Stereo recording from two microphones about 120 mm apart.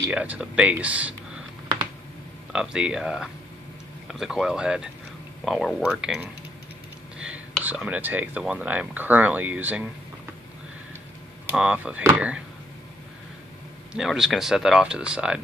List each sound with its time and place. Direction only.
0.1 s speech: 10° right (ahead or behind)
2.5 s speech: 5° right (ahead or behind)
7.2 s whispering: 10° right (ahead or behind)
7.6 s speech: 10° right (ahead or behind)
11.5 s speech: 5° right (ahead or behind)
13.9 s speech: centre (ahead or behind)